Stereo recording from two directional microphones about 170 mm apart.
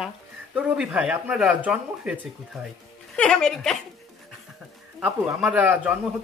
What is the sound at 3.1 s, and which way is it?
Speech, 5° left (ahead or behind).